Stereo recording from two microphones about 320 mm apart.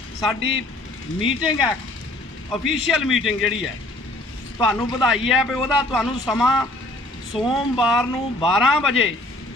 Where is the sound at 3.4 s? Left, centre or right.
Left.